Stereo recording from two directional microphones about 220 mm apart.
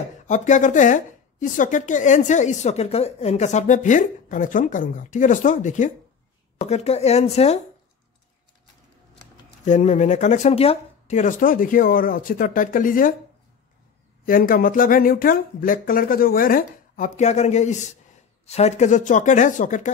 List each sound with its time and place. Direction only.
0.3 s a woman's voice: 35° left (ahead or behind)
9.7 s a woman's voice: 35° left (ahead or behind)
14.2 s a woman's voice: 40° left (ahead or behind)